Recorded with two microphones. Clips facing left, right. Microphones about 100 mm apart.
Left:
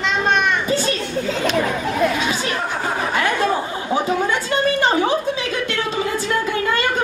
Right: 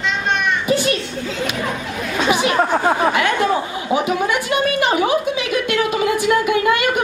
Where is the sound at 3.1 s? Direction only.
15° right (ahead or behind).